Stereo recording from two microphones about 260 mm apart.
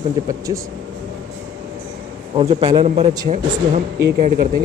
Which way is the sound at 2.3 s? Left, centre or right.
Right.